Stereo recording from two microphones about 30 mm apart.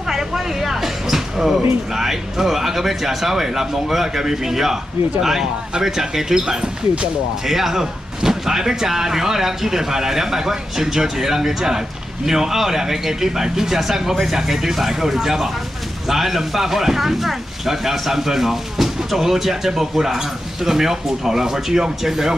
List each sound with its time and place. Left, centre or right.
0.1 s a sound: centre
2.0 s speech: centre
7.4 s speech: centre